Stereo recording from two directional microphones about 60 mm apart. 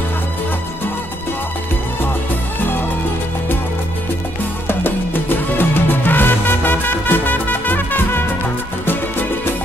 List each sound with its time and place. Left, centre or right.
4.6 s music: left